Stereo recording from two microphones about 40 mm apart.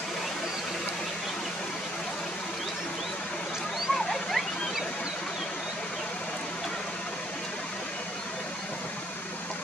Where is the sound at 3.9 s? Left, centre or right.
Centre.